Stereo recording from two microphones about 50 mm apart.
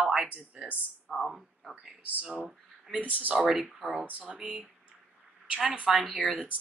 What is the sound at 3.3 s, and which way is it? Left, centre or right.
Speech, centre.